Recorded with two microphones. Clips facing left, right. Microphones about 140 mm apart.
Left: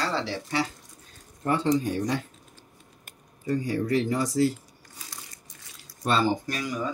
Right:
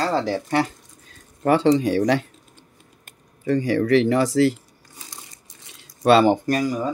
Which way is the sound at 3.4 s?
90° right.